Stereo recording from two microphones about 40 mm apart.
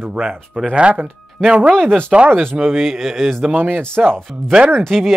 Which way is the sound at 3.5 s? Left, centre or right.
Right.